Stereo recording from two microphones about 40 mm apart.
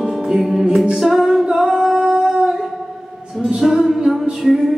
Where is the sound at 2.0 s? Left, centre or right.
Right.